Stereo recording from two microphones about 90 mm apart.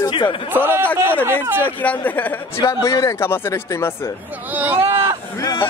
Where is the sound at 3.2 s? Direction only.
25° left (ahead or behind).